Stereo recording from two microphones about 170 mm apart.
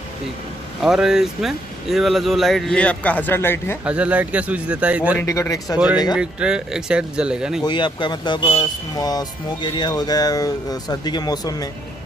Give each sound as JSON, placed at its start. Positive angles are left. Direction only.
{"t": 0.8, "sound": "speech", "side_deg": -5}
{"t": 3.8, "sound": "speech", "side_deg": -5}
{"t": 5.2, "sound": "speech", "side_deg": 20}
{"t": 6.1, "sound": "speech", "side_deg": -5}
{"t": 7.6, "sound": "speech", "side_deg": 25}